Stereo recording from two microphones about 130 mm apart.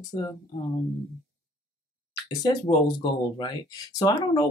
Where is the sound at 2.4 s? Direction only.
35° left (ahead or behind).